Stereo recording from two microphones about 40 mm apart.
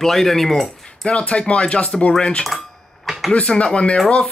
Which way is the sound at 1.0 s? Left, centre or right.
Left.